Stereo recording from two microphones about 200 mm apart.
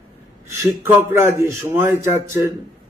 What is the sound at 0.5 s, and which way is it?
A man's voice, 15° right (ahead or behind).